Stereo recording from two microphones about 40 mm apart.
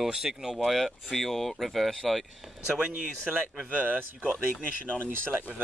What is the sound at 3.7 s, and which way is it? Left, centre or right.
Speech, right.